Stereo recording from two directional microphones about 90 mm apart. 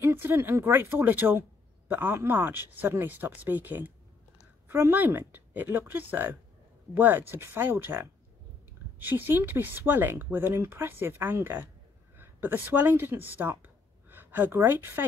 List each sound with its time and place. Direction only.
0.0 s speech: 30° right (ahead or behind)